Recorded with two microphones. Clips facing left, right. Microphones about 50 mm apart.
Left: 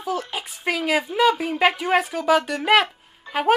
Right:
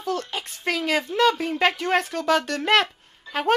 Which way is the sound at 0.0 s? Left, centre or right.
Centre.